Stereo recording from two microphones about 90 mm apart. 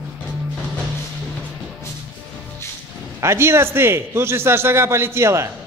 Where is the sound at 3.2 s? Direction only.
30° right (ahead or behind).